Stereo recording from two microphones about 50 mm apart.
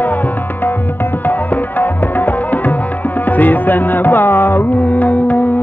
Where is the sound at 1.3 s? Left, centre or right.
Left.